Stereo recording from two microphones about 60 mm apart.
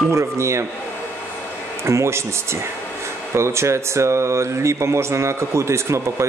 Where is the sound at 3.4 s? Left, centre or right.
Right.